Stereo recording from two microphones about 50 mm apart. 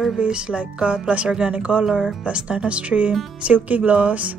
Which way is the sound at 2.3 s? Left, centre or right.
Right.